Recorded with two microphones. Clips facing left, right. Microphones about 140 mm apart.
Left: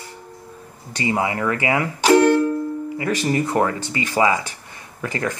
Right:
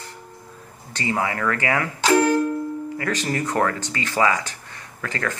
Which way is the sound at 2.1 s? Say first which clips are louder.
Left 4 dB; 75° left (ahead or behind).